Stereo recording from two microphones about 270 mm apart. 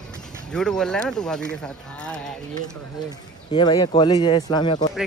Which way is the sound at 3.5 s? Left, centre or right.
Centre.